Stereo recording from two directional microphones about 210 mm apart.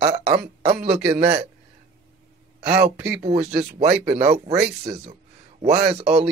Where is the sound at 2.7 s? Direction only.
5° right (ahead or behind).